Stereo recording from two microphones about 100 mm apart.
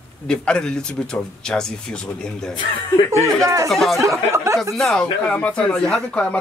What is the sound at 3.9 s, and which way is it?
Speech, 30° right (ahead or behind).